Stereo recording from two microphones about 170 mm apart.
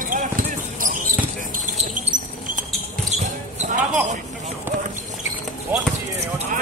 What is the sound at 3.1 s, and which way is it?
Basketball bounce, 40° right (ahead or behind).